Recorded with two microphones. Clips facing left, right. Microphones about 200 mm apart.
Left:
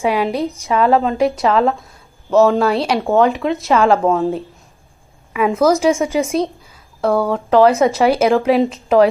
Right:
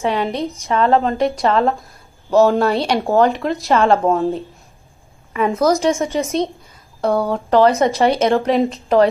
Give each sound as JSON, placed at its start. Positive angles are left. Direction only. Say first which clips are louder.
{"t": 0.0, "sound": "a woman's voice", "louder": "left 2 dB", "side_deg": 5}